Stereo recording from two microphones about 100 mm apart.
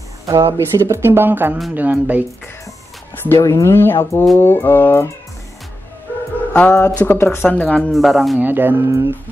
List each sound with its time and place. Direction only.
0.5 s speech: 30° right (ahead or behind)
3.3 s speech: 30° left (ahead or behind)
6.5 s speech: 20° left (ahead or behind); by 8.4 s centre (ahead or behind)
8.4 s speech: 20° right (ahead or behind)